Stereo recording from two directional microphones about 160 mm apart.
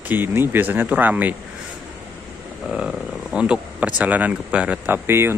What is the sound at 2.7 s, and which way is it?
Speech, 5° right (ahead or behind).